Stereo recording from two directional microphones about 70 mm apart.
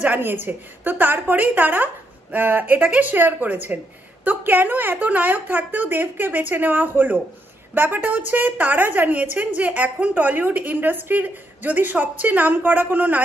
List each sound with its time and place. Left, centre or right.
0.0 s a woman's voice: right